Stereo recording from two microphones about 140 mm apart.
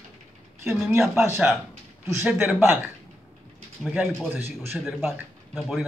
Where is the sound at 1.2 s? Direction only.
15° right (ahead or behind).